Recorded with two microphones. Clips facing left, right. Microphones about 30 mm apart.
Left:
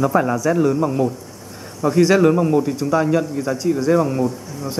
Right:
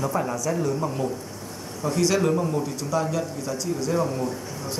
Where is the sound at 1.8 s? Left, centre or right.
Left.